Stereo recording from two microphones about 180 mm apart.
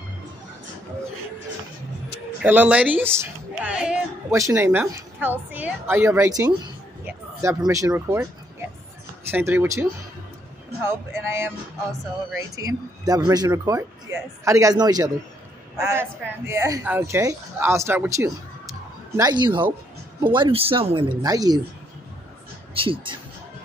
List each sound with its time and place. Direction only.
2.4 s a woman's voice: 10° right (ahead or behind)
7.1 s a sound: 15° right (ahead or behind)
7.9 s speech: 15° right (ahead or behind)
22.8 s speech: 30° right (ahead or behind)